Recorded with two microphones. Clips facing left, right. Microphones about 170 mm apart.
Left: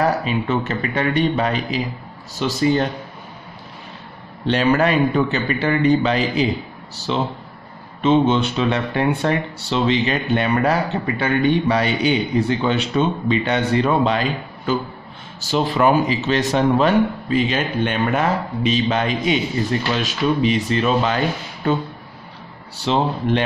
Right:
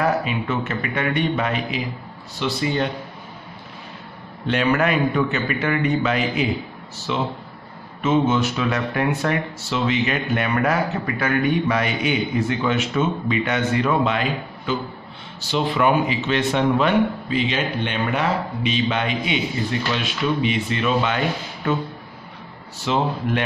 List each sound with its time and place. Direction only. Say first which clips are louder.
0.0 s speech: left 2 dB; 35° left (ahead or behind)
4.5 s speech: left 3 dB; 35° left (ahead or behind)
15.5 s speech: left 2 dB; 40° left (ahead or behind)
22.8 s speech: left 3 dB; 30° left (ahead or behind)